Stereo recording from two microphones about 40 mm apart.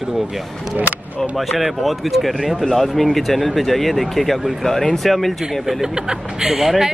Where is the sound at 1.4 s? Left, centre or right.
Centre.